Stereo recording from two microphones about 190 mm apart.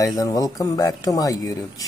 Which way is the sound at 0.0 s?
20° left (ahead or behind).